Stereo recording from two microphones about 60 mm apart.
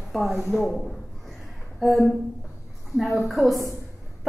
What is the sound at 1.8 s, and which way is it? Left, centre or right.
A woman's voice, centre.